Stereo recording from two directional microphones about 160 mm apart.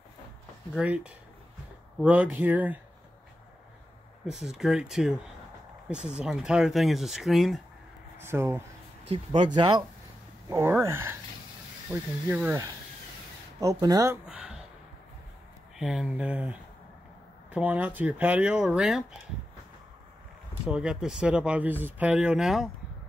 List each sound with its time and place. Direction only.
0.7 s speech: 5° right (ahead or behind)
4.3 s speech: centre (ahead or behind)
8.2 s speech: 15° right (ahead or behind)
9.1 s speech: 30° right (ahead or behind)
10.5 s speech: 15° right (ahead or behind)
13.6 s speech: 20° right (ahead or behind)
14.2 s speech: 5° right (ahead or behind)
15.8 s speech: 5° right (ahead or behind)
20.6 s speech: 5° right (ahead or behind)